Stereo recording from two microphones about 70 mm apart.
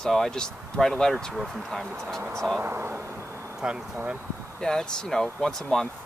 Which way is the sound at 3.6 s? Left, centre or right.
Centre.